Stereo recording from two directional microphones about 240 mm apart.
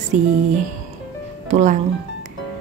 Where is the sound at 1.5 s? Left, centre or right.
Right.